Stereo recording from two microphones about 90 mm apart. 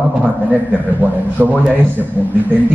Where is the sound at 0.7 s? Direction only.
20° right (ahead or behind).